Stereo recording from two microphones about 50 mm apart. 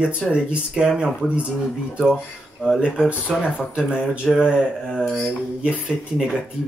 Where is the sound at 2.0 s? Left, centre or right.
Centre.